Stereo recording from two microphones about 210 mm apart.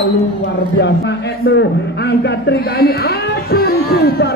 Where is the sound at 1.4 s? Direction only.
50° left (ahead or behind).